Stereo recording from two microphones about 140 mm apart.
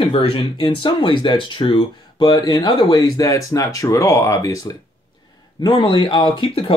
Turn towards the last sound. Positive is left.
turn(degrees=40)  # may be behind; listen again after turning